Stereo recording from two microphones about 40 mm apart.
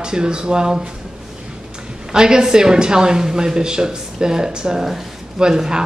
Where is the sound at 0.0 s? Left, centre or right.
Right.